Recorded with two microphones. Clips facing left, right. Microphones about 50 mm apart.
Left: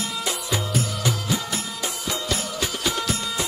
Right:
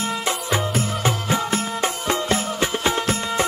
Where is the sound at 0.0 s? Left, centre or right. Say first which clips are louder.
Right 4 dB; right.